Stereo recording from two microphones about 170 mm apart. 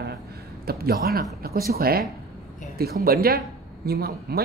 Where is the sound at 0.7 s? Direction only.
65° right (ahead or behind).